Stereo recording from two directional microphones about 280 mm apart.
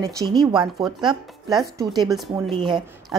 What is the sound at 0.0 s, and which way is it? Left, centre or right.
A woman's voice, centre.